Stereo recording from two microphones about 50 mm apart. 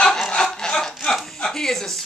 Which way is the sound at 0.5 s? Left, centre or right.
Centre.